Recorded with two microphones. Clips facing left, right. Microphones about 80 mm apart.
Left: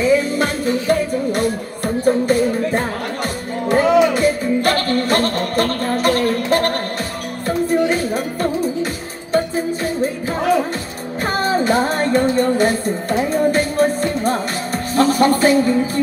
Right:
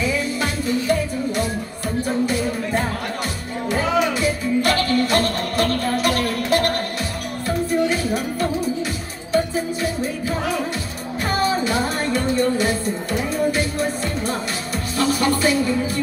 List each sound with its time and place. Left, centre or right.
0.0 s music: left